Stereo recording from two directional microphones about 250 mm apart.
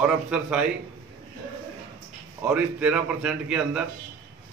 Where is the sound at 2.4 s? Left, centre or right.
Centre.